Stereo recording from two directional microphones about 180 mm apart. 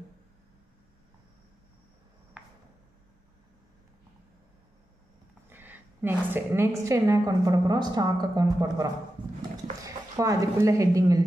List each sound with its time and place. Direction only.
5.5 s a woman's voice: 10° right (ahead or behind)
9.8 s speech: 20° right (ahead or behind)